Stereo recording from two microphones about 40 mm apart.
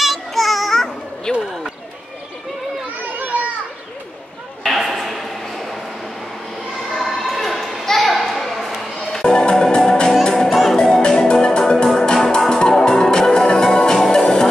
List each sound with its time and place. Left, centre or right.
0.0 s children playing: centre
1.4 s a sound: centre
4.6 s a sound: centre
6.8 s children playing: centre
9.3 s music: centre
10.5 s music: centre
11.0 s music: left